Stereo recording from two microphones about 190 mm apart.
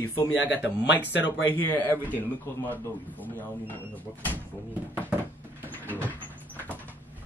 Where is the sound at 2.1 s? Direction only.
10° left (ahead or behind).